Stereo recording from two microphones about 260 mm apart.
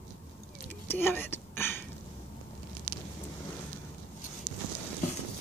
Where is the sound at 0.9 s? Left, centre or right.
Centre.